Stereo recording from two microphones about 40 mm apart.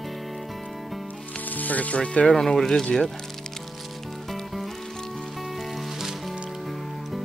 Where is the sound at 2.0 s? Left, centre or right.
Left.